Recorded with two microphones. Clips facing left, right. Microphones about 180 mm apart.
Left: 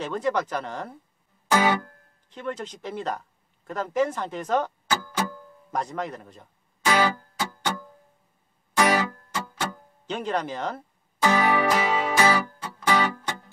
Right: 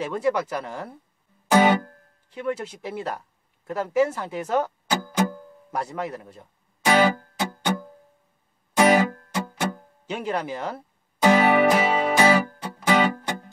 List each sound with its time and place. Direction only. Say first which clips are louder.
0.0 s speech: right 2 dB; 10° right (ahead or behind)
1.5 s music: right 4 dB; 20° right (ahead or behind)
2.2 s speech: right 4 dB; 10° right (ahead or behind)
4.8 s music: right 2 dB; 15° right (ahead or behind)
5.7 s speech: right 1 dB; 5° right (ahead or behind)
6.9 s music: right 4 dB; 20° right (ahead or behind)